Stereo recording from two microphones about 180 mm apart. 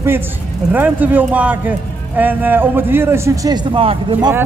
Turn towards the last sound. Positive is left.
turn(degrees=-30)  # may be behind; listen again after turning